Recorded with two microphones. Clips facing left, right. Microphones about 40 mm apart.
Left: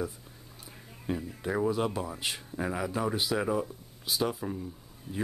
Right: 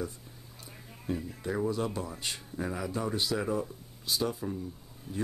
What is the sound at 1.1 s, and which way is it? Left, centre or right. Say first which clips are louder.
Speech: left 2 dB; left.